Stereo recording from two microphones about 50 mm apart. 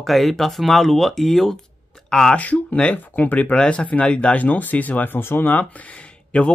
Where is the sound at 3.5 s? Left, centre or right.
Left.